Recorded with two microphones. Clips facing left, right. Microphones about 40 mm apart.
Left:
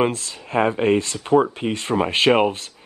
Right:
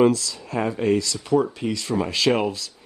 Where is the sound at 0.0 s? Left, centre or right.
Left.